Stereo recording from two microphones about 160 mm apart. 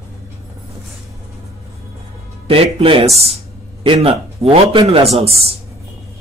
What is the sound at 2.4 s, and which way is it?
A man's voice, 35° right (ahead or behind).